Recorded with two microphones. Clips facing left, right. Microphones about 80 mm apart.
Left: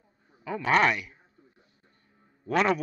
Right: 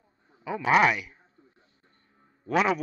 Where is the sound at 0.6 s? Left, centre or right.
Centre.